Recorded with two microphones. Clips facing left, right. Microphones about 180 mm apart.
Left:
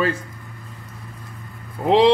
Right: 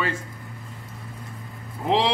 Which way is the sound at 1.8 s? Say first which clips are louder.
Left 5 dB; 65° left (ahead or behind).